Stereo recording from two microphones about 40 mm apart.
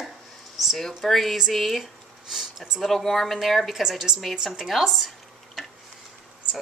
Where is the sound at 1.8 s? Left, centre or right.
Centre.